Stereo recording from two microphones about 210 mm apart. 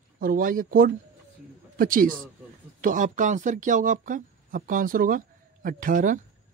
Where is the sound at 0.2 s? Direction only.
45° right (ahead or behind).